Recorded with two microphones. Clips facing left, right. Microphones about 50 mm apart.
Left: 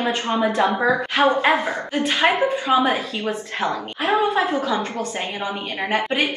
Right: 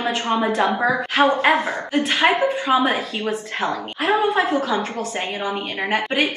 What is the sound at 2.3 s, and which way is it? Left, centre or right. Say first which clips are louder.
A woman's voice: even; right.